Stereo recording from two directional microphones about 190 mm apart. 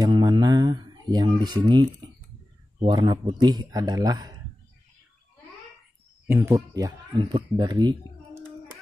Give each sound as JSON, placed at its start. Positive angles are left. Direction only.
{"t": 0.0, "sound": "speech", "side_deg": -20}
{"t": 6.2, "sound": "speech", "side_deg": -10}